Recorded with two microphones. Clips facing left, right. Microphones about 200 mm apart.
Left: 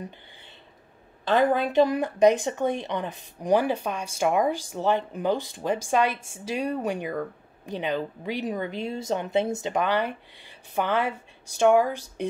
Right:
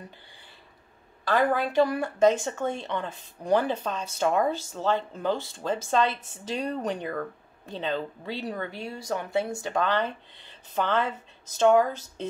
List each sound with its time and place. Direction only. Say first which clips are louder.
1.2 s a woman's voice: left 2 dB; 20° left (ahead or behind)